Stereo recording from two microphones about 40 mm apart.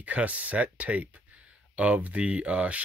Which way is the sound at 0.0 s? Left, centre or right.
Right.